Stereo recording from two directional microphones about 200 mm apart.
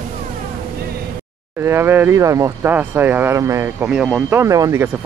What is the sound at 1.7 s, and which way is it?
Speech, 10° right (ahead or behind).